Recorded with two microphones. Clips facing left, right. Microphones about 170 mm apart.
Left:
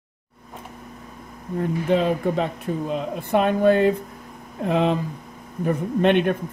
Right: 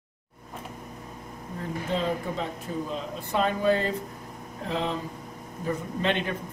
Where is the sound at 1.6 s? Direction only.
65° left (ahead or behind).